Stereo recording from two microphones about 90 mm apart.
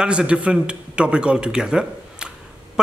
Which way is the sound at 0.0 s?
10° right (ahead or behind).